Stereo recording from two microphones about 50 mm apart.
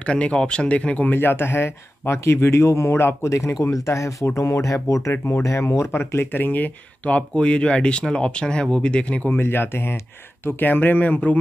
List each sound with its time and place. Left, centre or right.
0.0 s speech: left
1.1 s speech: left
3.0 s speech: left
5.2 s speech: left
9.3 s speech: left
10.4 s speech: left